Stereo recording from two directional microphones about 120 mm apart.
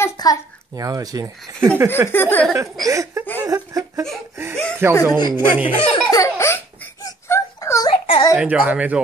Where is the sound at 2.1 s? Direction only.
15° left (ahead or behind).